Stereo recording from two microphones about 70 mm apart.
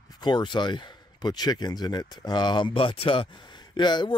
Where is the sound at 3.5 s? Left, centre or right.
Left.